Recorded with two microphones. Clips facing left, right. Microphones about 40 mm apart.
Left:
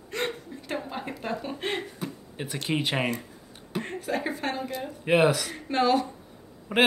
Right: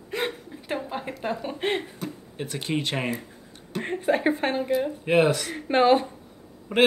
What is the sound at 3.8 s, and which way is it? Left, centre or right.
Speech, right.